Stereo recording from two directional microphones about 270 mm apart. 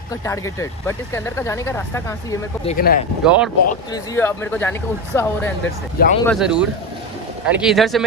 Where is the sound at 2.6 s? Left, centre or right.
Left.